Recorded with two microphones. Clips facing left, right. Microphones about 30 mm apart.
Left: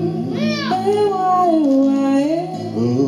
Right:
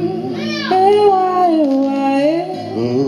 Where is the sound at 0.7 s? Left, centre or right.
Right.